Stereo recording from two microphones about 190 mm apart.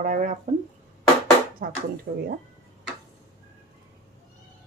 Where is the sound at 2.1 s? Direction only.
50° right (ahead or behind).